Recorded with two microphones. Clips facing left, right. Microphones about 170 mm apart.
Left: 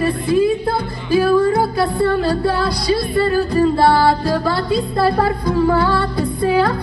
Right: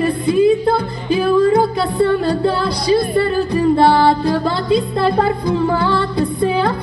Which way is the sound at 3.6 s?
25° right (ahead or behind).